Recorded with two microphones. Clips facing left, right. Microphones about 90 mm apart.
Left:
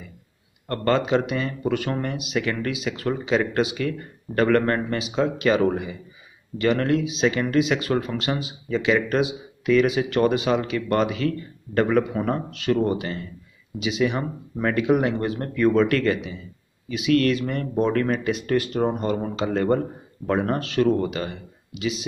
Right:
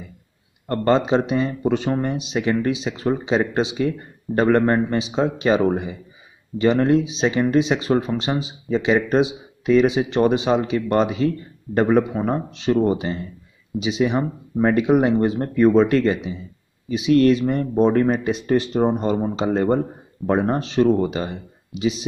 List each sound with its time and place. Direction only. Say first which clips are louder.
0.8 s speech: right 3 dB; 30° right (ahead or behind)
4.9 s speech: right 3 dB; 30° right (ahead or behind)
6.6 s speech: right 4 dB; 25° right (ahead or behind)
7.9 s speech: right 4 dB; 20° right (ahead or behind)
8.2 s speech: right 3 dB; 30° right (ahead or behind)
12.1 s speech: right 2 dB; 20° right (ahead or behind)